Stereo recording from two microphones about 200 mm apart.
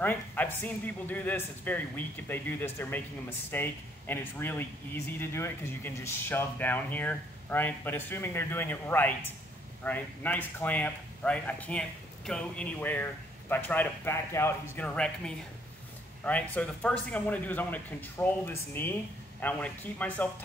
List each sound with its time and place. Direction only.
0.0 s a man's voice: 10° left (ahead or behind)